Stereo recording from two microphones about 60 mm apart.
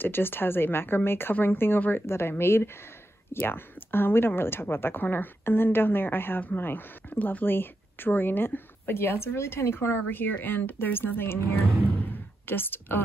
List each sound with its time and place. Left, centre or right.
0.0 s a woman's voice: left
2.0 s a woman's voice: left